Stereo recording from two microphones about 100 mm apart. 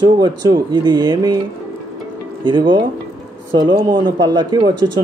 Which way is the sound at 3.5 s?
40° right (ahead or behind).